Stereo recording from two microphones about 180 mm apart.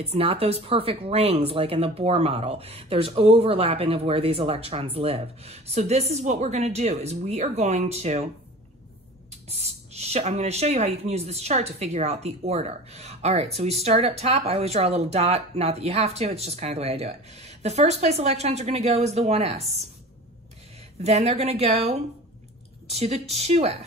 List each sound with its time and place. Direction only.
0.0 s speech: 35° right (ahead or behind)
9.3 s speech: 35° right (ahead or behind)
21.0 s speech: 35° right (ahead or behind)